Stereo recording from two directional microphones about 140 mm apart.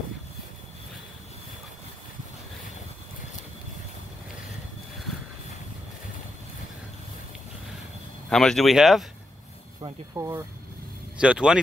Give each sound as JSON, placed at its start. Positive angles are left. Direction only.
{"t": 8.3, "sound": "speech", "side_deg": 5}
{"t": 9.8, "sound": "speech", "side_deg": -25}
{"t": 11.1, "sound": "speech", "side_deg": -5}